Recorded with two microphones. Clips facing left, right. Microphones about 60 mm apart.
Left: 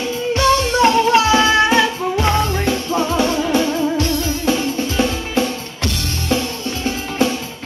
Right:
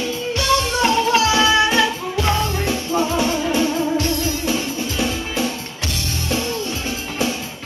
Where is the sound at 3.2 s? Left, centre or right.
Left.